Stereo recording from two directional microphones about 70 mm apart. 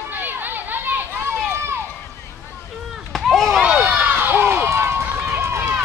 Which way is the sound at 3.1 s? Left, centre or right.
Centre.